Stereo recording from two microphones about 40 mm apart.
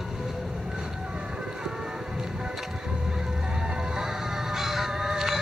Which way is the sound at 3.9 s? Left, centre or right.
Centre.